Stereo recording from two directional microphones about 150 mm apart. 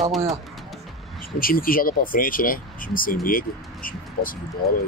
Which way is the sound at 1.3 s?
75° left (ahead or behind).